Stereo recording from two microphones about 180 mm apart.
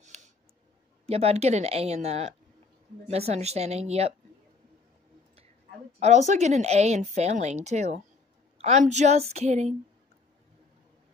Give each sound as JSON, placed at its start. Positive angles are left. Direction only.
{"t": 0.0, "sound": "a sound", "side_deg": -40}
{"t": 1.0, "sound": "speech", "side_deg": -35}
{"t": 5.9, "sound": "speech", "side_deg": -40}